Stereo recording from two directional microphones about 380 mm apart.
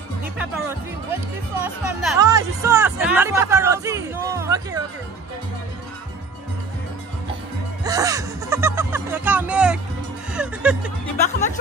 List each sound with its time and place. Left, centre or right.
1.6 s speech: centre
7.8 s music: centre
10.3 s speech: centre
11.2 s speech: centre